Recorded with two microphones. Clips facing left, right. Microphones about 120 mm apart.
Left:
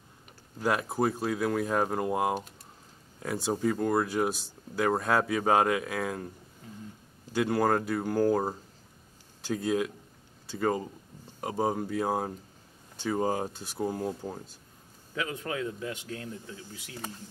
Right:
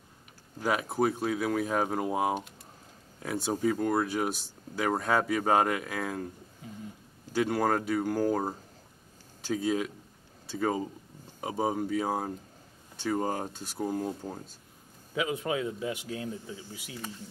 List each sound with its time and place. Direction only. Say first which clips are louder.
0.6 s speech: even; centre (ahead or behind)
7.3 s speech: left 1 dB; centre (ahead or behind)
15.1 s speech: right 3 dB; 10° right (ahead or behind)